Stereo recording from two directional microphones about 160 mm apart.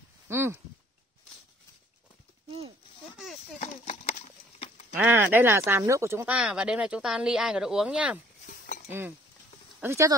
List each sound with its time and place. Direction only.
0.3 s speech: 15° right (ahead or behind)
3.5 s horse: 45° left (ahead or behind)
4.9 s speech: 10° right (ahead or behind)
6.3 s speech: 5° right (ahead or behind)
8.5 s cutlery: 55° left (ahead or behind)
9.8 s speech: 15° right (ahead or behind)